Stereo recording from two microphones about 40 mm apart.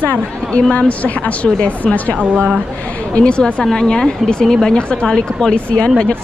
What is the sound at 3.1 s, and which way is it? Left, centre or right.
Speech, left.